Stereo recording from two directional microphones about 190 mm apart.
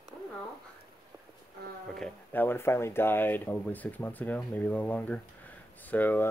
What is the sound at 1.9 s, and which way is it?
Speech, 5° left (ahead or behind).